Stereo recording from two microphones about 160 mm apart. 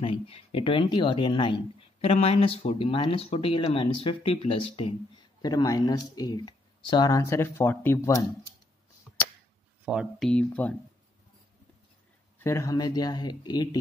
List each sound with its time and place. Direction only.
0.0 s speech: 35° left (ahead or behind)
5.4 s speech: 25° left (ahead or behind)
9.8 s speech: 5° right (ahead or behind)
12.4 s speech: 20° left (ahead or behind)